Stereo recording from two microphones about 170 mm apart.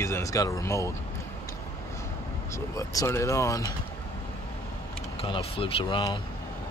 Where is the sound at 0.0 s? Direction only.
15° left (ahead or behind).